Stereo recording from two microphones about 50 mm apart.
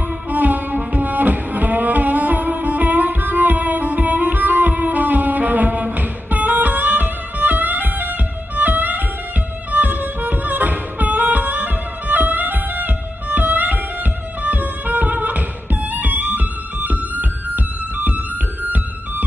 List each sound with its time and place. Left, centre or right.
0.3 s music: right